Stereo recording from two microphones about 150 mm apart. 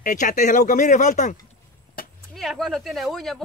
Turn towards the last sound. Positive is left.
turn(degrees=0)  # may be behind; listen again after turning